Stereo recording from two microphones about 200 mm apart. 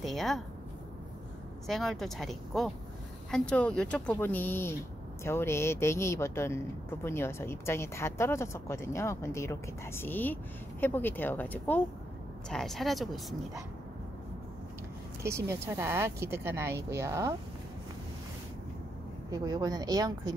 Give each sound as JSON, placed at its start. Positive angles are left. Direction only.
{"t": 0.0, "sound": "speech", "side_deg": 0}
{"t": 1.7, "sound": "a woman's voice", "side_deg": 0}
{"t": 15.2, "sound": "a woman's voice", "side_deg": -15}
{"t": 19.3, "sound": "a woman's voice", "side_deg": -20}